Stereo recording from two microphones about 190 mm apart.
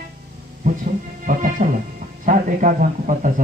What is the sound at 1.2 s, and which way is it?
Speech, 45° right (ahead or behind).